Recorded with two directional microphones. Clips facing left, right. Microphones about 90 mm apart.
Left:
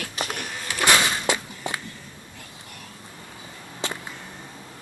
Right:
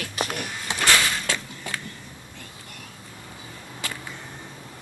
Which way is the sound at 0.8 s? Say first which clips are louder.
Left 2 dB; 20° left (ahead or behind).